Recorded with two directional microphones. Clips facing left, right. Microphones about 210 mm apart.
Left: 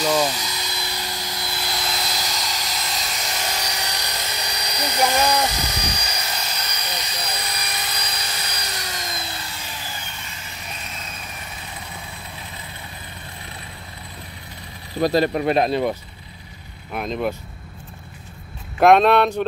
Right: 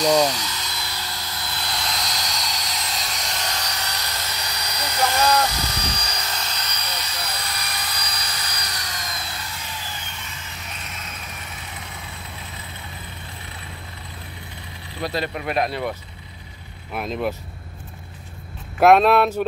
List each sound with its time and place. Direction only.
0.0 s helicopter: 5° left (ahead or behind); by 9.1 s 25° left (ahead or behind)
15.0 s speech: 40° left (ahead or behind); by 16.0 s 20° left (ahead or behind)
16.9 s speech: centre (ahead or behind)
18.8 s speech: 5° right (ahead or behind)